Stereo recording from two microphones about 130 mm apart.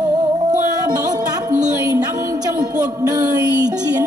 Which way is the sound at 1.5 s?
25° right (ahead or behind).